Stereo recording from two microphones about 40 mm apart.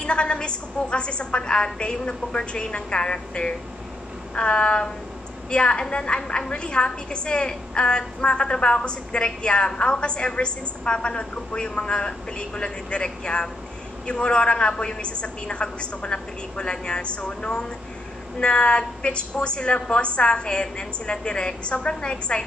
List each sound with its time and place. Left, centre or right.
0.0 s a woman's voice: left